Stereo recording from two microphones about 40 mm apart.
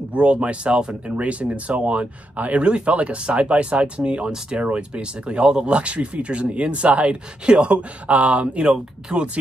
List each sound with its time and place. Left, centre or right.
0.1 s speech: right
7.4 s speech: right
7.7 s speech: right
9.1 s speech: centre